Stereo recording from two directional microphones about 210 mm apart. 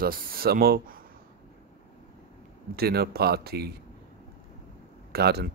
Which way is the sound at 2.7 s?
50° right (ahead or behind).